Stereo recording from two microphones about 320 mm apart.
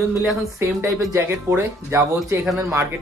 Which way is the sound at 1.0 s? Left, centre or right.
Centre.